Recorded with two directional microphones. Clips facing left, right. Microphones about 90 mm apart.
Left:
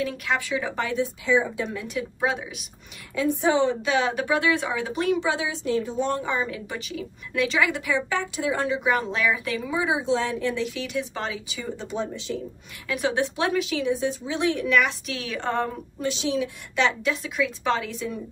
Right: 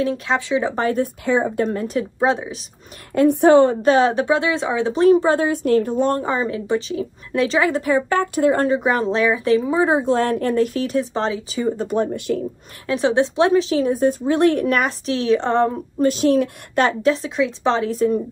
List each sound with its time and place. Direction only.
0.0 s speech: 25° right (ahead or behind)
0.8 s speech: 50° right (ahead or behind)
2.1 s a woman's voice: 30° right (ahead or behind)
3.2 s a woman's voice: 60° right (ahead or behind)
12.8 s a woman's voice: 30° right (ahead or behind)
16.0 s speech: 45° right (ahead or behind)
17.1 s a woman's voice: 30° right (ahead or behind)
17.9 s speech: 45° right (ahead or behind)